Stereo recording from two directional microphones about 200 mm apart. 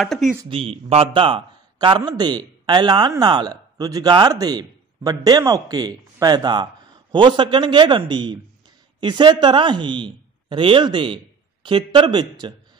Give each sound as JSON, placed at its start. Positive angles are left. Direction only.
{"t": 0.0, "sound": "speech", "side_deg": 0}
{"t": 0.5, "sound": "a man's voice", "side_deg": -30}